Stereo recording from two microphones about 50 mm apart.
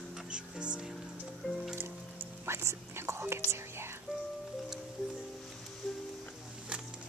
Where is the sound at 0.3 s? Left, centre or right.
Centre.